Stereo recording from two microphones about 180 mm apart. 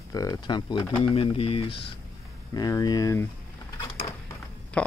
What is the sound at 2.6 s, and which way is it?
Speech, 20° left (ahead or behind).